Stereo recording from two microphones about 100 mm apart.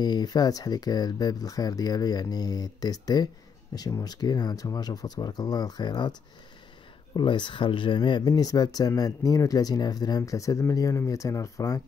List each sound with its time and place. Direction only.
0.0 s speech: 45° left (ahead or behind)
7.2 s speech: 50° left (ahead or behind)
8.2 s speech: 40° left (ahead or behind)